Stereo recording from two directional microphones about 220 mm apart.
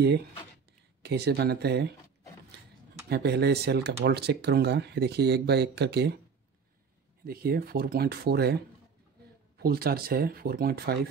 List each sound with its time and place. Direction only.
1.0 s speech: 50° right (ahead or behind)
3.1 s speech: 45° right (ahead or behind)
7.2 s speech: 45° right (ahead or behind)
9.6 s speech: 45° right (ahead or behind)